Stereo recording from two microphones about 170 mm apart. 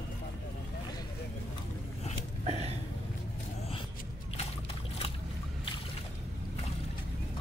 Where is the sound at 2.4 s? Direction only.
35° right (ahead or behind).